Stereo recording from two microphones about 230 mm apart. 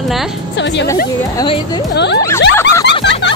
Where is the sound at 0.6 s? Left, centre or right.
Left.